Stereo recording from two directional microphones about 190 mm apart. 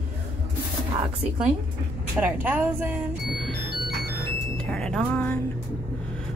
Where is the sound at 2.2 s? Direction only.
10° right (ahead or behind).